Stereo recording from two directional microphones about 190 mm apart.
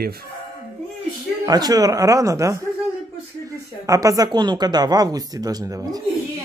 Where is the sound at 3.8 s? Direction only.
15° right (ahead or behind).